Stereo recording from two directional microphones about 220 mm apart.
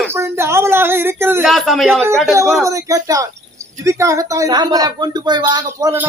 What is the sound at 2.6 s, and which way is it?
Speech, 15° right (ahead or behind).